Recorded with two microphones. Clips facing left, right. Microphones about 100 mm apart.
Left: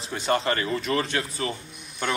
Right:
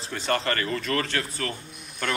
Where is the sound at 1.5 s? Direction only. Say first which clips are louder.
Even; centre (ahead or behind).